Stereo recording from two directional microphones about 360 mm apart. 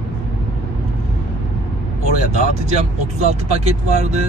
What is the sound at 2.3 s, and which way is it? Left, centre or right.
Speech, centre.